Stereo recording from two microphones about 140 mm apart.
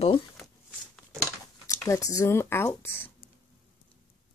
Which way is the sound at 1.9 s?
25° left (ahead or behind).